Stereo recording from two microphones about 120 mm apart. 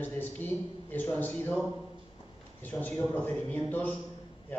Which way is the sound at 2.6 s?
15° left (ahead or behind).